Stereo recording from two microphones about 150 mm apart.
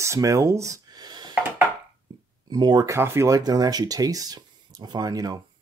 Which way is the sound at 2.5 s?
30° right (ahead or behind).